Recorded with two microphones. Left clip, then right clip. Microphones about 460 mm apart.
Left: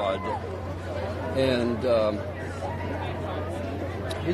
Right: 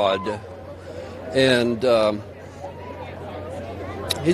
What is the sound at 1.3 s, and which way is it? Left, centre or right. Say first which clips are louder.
Speech: right 7 dB; right.